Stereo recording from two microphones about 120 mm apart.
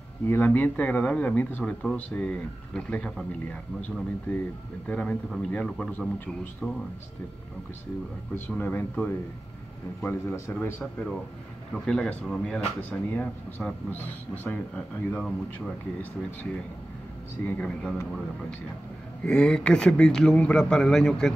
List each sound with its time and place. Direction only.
0.3 s speech: 15° left (ahead or behind)
8.5 s speech: 15° left (ahead or behind)
17.5 s speech: 10° left (ahead or behind)
19.2 s speech: 5° left (ahead or behind)